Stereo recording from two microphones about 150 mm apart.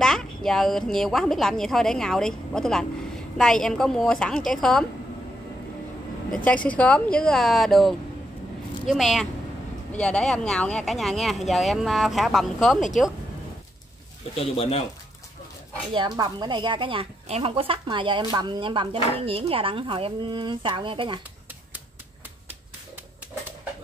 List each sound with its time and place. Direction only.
0.0 s speech: 5° left (ahead or behind)
6.3 s speech: 10° left (ahead or behind)
14.3 s speech: 40° left (ahead or behind)
15.9 s speech: 30° right (ahead or behind)